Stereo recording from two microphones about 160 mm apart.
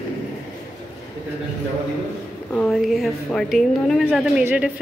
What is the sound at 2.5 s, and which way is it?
A woman's voice, 5° left (ahead or behind).